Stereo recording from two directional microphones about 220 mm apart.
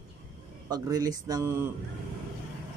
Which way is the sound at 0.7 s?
15° right (ahead or behind).